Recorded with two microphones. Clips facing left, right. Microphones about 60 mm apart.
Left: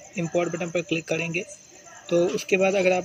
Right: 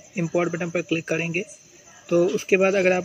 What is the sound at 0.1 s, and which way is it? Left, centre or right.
A man's voice, right.